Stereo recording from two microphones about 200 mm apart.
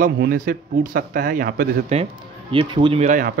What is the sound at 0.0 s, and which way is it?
A man's voice, 50° right (ahead or behind).